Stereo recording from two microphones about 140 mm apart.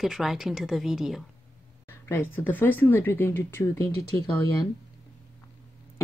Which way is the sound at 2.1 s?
15° left (ahead or behind).